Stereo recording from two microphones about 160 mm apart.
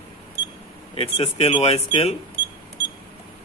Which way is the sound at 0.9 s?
40° left (ahead or behind).